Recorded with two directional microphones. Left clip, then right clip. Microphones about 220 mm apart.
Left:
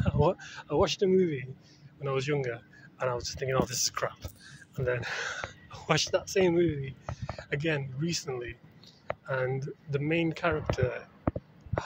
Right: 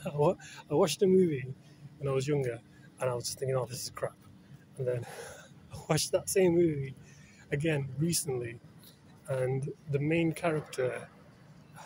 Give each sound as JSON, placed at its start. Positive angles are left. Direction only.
{"t": 0.0, "sound": "speech", "side_deg": -10}